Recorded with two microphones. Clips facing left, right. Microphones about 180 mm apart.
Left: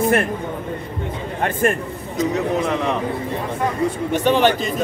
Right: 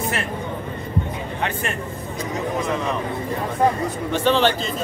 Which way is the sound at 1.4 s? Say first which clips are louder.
Left 8 dB; 50° left (ahead or behind).